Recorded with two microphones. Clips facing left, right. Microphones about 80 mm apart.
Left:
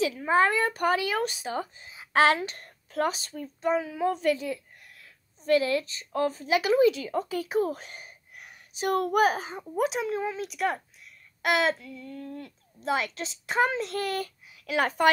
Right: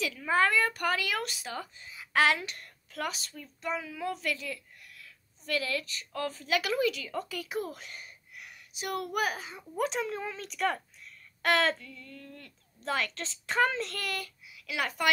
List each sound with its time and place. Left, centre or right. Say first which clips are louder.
0.0 s speech: left 4 dB; left
9.8 s a woman's voice: left 4 dB; centre; by 15.0 s left